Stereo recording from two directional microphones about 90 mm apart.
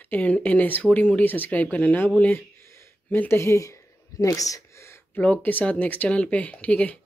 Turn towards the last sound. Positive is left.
turn(degrees=15)  # may be behind; listen again after turning